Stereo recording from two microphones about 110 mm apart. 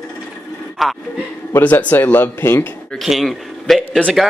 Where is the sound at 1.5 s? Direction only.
15° left (ahead or behind).